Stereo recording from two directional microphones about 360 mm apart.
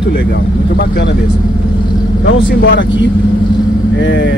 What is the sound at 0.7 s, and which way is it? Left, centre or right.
Speech, left.